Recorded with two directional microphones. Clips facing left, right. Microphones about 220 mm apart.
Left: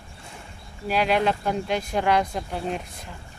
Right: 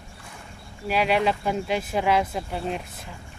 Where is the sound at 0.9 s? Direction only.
Centre (ahead or behind).